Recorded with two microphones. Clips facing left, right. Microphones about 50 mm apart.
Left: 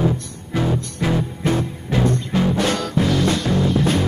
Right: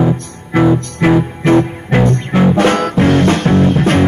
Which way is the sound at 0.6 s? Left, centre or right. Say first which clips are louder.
Right 10 dB; right.